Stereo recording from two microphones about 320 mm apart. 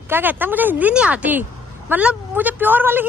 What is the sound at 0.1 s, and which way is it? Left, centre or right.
A woman's voice, centre.